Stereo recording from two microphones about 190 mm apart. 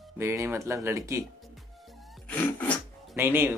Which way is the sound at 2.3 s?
10° left (ahead or behind).